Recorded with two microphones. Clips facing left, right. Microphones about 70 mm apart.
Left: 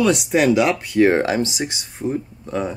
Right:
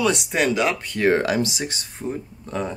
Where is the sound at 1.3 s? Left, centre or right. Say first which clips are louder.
Left 2 dB; left.